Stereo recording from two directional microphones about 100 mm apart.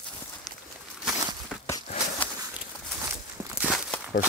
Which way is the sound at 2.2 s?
15° left (ahead or behind).